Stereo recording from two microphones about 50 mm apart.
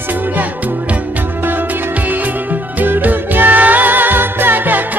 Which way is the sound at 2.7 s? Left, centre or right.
Right.